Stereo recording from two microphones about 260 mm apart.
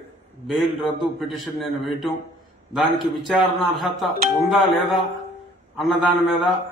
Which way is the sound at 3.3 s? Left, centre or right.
Centre.